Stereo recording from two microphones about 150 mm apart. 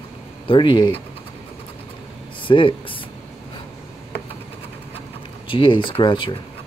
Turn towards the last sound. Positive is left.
turn(degrees=30)  # may be behind; listen again after turning